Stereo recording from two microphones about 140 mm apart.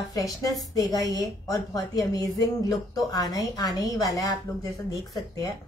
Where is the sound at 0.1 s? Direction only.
25° left (ahead or behind).